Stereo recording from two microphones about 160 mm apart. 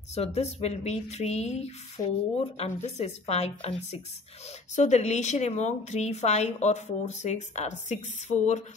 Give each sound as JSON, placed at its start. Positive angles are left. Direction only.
{"t": 0.1, "sound": "a woman's voice", "side_deg": 40}